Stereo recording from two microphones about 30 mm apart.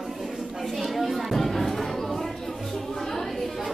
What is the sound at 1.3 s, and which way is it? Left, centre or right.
Music, centre.